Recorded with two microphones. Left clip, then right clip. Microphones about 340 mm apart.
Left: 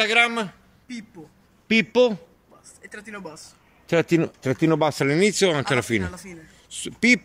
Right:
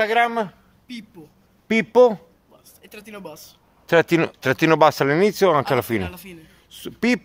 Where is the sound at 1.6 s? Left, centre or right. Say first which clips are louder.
Right 4 dB; right.